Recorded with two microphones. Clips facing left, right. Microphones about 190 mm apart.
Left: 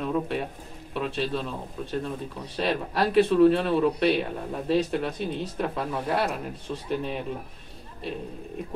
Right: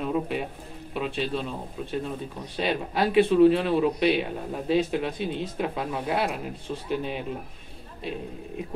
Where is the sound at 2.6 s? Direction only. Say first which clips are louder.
Even; 5° right (ahead or behind).